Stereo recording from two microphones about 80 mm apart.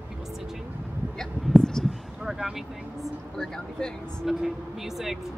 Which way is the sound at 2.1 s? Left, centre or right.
Centre.